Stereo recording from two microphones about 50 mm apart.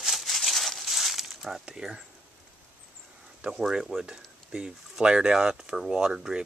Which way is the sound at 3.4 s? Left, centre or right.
Centre.